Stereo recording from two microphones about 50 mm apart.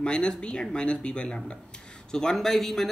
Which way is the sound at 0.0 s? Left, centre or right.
Centre.